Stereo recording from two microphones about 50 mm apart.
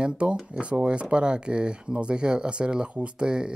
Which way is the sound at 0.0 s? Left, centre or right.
Right.